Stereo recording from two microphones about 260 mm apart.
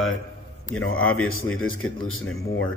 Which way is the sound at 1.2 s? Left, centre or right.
Left.